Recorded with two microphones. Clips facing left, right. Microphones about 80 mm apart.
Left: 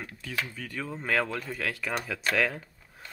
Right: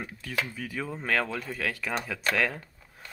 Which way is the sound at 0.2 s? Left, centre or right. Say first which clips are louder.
Right 2 dB; centre.